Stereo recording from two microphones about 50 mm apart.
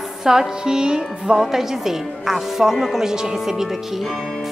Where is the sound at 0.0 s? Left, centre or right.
Centre.